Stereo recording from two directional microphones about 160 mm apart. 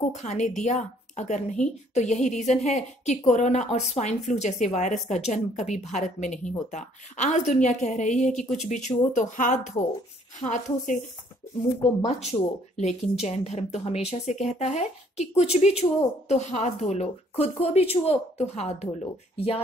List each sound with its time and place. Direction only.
0.1 s a woman's voice: 45° left (ahead or behind)
12.2 s a woman's voice: 45° left (ahead or behind)